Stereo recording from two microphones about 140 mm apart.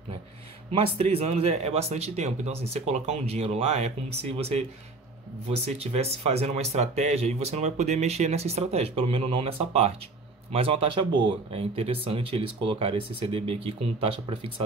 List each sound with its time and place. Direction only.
0.7 s speech: 45° right (ahead or behind)